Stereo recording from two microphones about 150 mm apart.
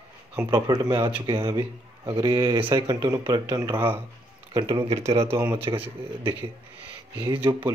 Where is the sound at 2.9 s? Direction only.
30° right (ahead or behind).